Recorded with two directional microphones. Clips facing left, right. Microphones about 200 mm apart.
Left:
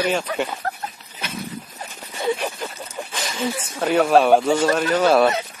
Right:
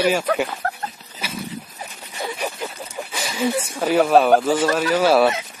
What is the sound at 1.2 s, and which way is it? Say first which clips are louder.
Dog: right 1 dB; 5° right (ahead or behind).